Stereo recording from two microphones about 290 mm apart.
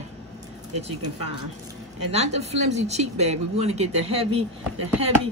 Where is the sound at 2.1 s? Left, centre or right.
Right.